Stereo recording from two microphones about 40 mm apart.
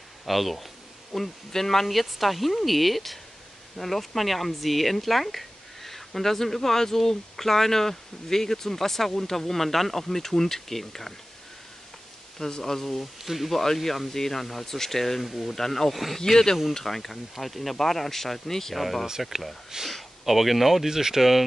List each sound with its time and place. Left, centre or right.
0.3 s speech: centre
12.4 s speech: centre
16.3 s speech: centre
19.7 s speech: centre
20.2 s speech: centre